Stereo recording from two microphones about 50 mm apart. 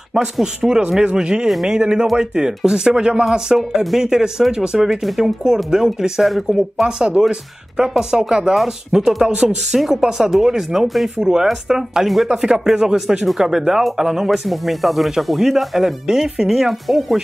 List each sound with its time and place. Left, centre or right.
0.1 s speech: centre
7.0 s speech: centre